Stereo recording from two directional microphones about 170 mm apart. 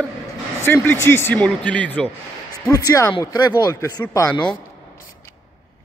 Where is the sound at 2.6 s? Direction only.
20° left (ahead or behind).